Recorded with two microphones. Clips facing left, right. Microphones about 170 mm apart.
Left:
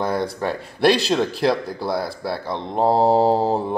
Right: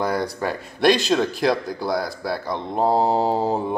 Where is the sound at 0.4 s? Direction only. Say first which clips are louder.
Left 2 dB; centre (ahead or behind).